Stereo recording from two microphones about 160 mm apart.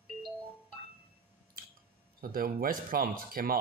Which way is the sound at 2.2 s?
65° right (ahead or behind).